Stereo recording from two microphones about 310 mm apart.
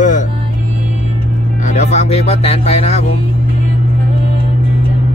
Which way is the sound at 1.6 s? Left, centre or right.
Left.